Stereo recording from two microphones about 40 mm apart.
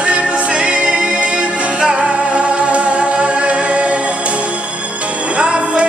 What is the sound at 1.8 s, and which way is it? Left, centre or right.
Music, right.